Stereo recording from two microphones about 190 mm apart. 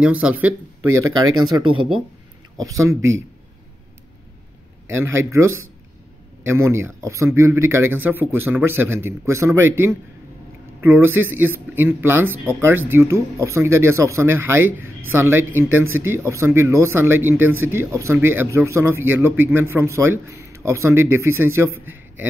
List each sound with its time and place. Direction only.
0.0 s a man's voice: 5° right (ahead or behind)
1.4 s a man's voice: 25° right (ahead or behind)
4.9 s a man's voice: 15° right (ahead or behind)